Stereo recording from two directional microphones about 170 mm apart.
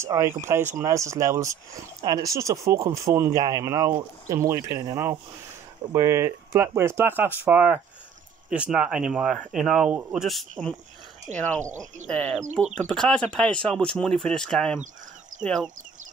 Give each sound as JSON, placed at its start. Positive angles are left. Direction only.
{"t": 0.0, "sound": "speech", "side_deg": -15}
{"t": 11.3, "sound": "speech", "side_deg": -45}
{"t": 12.1, "sound": "speech", "side_deg": 5}